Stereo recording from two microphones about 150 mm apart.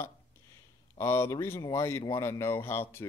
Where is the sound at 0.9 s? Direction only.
20° left (ahead or behind).